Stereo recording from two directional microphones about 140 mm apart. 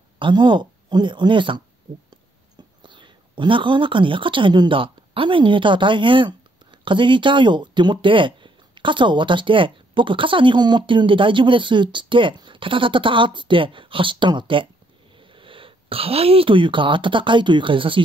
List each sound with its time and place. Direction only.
0.2 s speech: 35° right (ahead or behind)
2.8 s speech: 35° right (ahead or behind)